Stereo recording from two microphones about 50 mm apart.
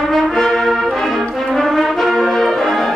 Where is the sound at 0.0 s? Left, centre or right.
Centre.